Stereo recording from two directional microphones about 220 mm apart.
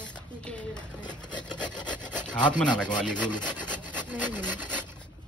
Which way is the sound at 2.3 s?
20° left (ahead or behind).